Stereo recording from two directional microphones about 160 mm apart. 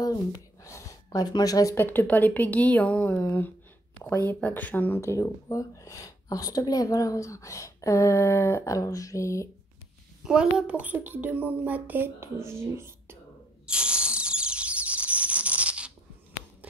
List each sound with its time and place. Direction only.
0.7 s speech: 20° left (ahead or behind)
10.2 s a woman's voice: 5° right (ahead or behind)
13.7 s a sound: 5° right (ahead or behind)